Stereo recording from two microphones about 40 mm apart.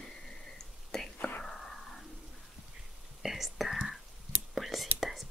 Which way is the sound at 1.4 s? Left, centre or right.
Centre.